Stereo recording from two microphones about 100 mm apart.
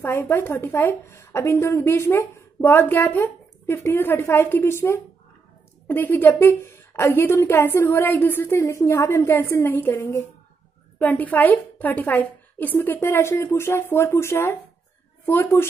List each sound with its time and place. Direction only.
0.0 s a woman's voice: 25° left (ahead or behind)